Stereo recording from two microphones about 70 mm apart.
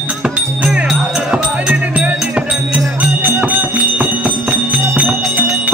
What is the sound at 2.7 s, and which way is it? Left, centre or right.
Music, right.